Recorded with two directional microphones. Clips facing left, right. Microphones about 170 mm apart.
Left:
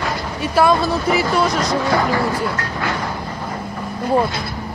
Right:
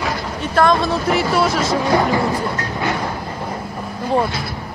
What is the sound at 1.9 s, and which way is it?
Speech, 20° right (ahead or behind).